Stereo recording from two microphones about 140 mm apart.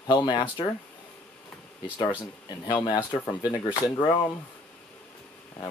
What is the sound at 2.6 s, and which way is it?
Speech, 30° left (ahead or behind).